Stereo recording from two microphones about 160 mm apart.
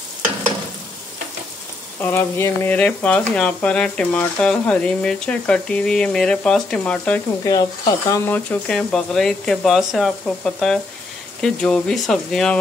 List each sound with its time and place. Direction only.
2.0 s speech: 15° left (ahead or behind)
7.4 s speech: 25° left (ahead or behind)
8.3 s speech: 5° left (ahead or behind)